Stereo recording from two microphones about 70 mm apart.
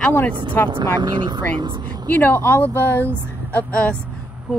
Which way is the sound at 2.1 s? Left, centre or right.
Left.